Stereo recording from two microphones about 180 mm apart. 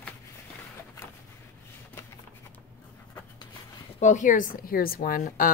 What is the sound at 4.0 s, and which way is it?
A woman's voice, 40° left (ahead or behind).